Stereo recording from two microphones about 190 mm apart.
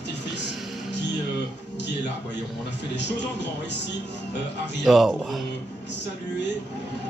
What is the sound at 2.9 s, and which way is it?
Speech, 65° left (ahead or behind).